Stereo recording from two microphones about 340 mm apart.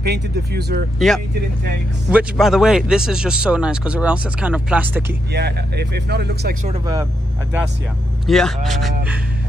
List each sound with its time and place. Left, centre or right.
0.0 s speech: right
0.9 s speech: centre
5.3 s speech: right
8.3 s speech: centre